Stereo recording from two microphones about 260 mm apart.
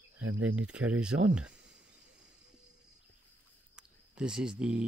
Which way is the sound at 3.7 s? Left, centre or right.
Centre.